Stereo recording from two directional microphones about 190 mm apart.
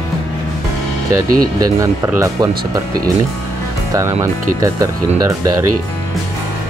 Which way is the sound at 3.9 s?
20° right (ahead or behind).